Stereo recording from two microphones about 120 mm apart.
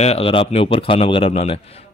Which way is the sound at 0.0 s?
55° left (ahead or behind).